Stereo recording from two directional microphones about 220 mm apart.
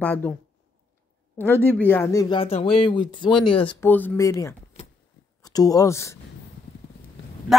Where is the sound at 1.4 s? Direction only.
10° left (ahead or behind).